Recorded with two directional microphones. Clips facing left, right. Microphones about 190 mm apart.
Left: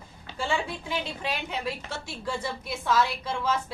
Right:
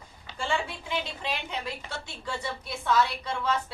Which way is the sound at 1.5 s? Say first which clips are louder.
Left 3 dB; 5° left (ahead or behind).